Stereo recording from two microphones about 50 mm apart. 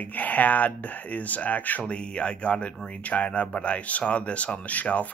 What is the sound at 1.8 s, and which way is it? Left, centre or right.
Speech, left.